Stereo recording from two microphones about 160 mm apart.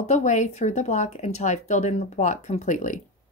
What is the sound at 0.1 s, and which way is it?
Speech, 50° left (ahead or behind).